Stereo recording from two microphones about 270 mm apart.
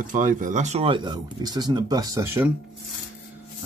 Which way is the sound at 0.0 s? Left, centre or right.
Right.